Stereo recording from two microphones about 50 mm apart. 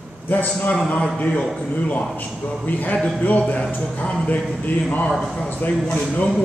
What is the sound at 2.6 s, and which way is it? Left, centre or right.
A man's voice, left.